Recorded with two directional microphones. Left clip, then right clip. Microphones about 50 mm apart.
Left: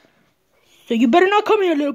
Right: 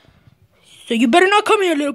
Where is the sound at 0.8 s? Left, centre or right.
Left.